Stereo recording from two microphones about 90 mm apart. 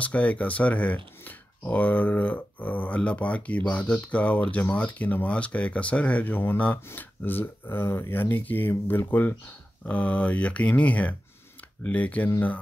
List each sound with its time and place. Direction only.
0.0 s speech: 15° left (ahead or behind)